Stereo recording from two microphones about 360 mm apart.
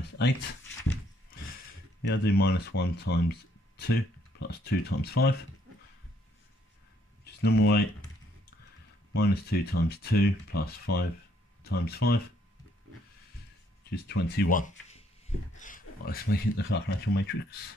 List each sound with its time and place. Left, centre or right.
2.0 s speech: left
7.4 s speech: left
9.1 s speech: left
13.8 s speech: left